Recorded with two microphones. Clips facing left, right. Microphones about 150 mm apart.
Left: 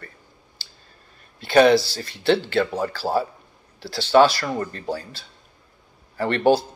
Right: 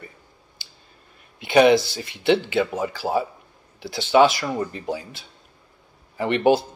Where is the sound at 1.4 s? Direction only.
15° right (ahead or behind).